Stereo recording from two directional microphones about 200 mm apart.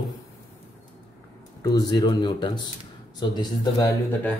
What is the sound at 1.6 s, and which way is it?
Speech, 20° left (ahead or behind).